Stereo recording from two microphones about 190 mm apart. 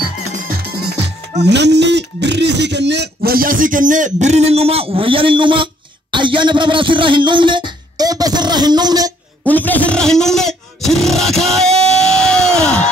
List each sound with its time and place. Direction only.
0.3 s music: 50° right (ahead or behind)
1.4 s speech: 65° right (ahead or behind); by 5.7 s 25° right (ahead or behind)
6.1 s music: 25° right (ahead or behind)
9.5 s a sound: 10° left (ahead or behind)